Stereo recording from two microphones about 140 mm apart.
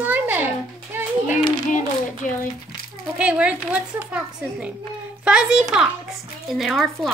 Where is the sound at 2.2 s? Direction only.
70° left (ahead or behind).